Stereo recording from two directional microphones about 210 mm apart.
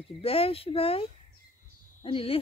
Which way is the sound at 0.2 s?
25° left (ahead or behind).